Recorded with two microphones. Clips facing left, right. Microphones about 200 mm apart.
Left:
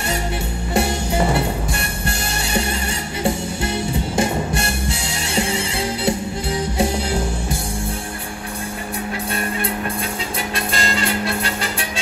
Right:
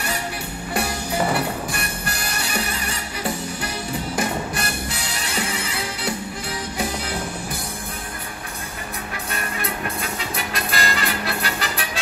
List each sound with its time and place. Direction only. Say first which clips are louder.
0.7 s music: left 4 dB; 25° left (ahead or behind)
4.2 s music: left 5 dB; 25° left (ahead or behind)
10.5 s music: left 2 dB; 25° left (ahead or behind)